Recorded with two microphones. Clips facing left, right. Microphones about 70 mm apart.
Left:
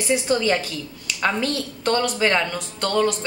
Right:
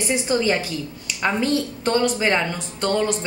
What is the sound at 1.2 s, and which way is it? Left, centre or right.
A woman's voice, centre.